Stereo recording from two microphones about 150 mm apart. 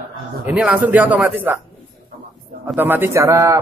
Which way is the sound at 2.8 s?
15° right (ahead or behind).